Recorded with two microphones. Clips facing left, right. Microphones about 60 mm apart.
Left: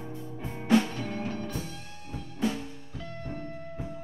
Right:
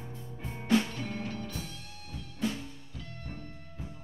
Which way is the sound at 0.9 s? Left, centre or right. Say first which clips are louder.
Left 3 dB; left.